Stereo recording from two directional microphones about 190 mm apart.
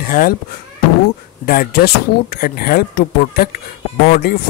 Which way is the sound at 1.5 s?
55° left (ahead or behind).